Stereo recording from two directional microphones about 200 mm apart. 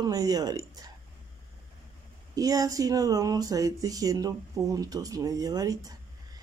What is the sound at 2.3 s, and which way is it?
Speech, 15° right (ahead or behind).